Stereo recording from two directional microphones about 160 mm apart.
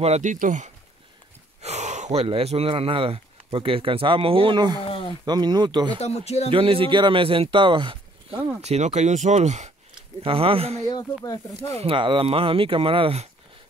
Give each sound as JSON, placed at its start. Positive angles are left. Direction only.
{"t": 0.0, "sound": "speech", "side_deg": -45}
{"t": 1.6, "sound": "a sound", "side_deg": -45}
{"t": 2.2, "sound": "speech", "side_deg": -35}
{"t": 5.9, "sound": "speech", "side_deg": 40}
{"t": 6.5, "sound": "speech", "side_deg": -35}